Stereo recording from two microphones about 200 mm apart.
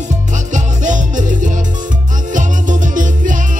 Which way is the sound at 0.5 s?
40° right (ahead or behind).